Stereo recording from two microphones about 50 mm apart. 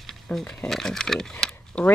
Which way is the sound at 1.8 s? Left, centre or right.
Centre.